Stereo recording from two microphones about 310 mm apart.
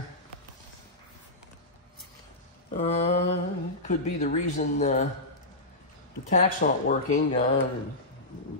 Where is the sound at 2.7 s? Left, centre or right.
Centre.